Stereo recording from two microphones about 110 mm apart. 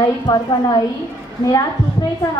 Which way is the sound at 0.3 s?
40° left (ahead or behind).